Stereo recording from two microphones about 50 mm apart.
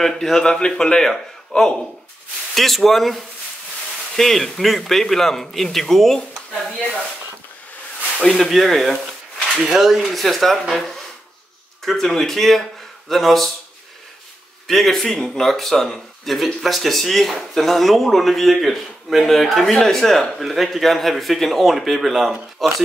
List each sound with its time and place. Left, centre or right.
0.0 s speech: centre
8.3 s speech: centre
14.7 s speech: centre